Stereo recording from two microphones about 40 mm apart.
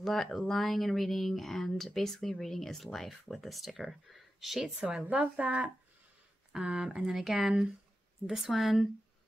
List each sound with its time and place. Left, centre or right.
0.0 s speech: centre
5.0 s speech: right
6.6 s speech: right; by 8.8 s centre